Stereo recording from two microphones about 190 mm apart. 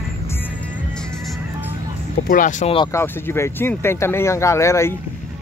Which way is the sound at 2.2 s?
45° left (ahead or behind).